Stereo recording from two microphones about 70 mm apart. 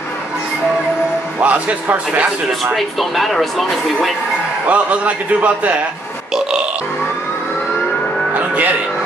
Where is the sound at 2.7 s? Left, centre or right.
Centre.